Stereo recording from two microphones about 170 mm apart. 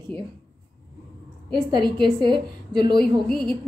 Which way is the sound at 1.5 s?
25° right (ahead or behind).